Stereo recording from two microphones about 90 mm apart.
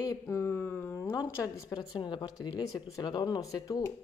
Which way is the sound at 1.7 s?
60° left (ahead or behind).